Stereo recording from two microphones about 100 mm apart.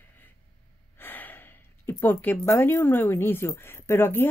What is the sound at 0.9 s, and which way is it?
Speech, 20° left (ahead or behind).